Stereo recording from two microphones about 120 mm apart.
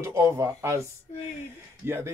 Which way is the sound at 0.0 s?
25° right (ahead or behind).